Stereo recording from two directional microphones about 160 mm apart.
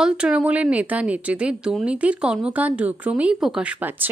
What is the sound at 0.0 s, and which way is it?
Speech, 5° right (ahead or behind).